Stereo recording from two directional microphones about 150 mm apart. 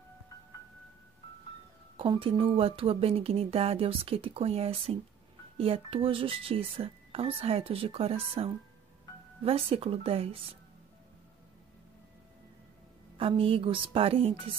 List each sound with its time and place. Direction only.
2.0 s speech: 35° right (ahead or behind)
13.2 s speech: 40° right (ahead or behind)